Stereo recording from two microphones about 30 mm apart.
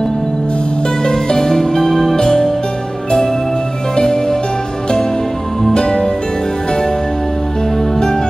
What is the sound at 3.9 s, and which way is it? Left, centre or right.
Music, centre.